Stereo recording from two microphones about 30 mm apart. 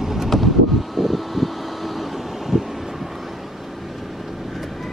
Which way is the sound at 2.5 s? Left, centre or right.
Centre.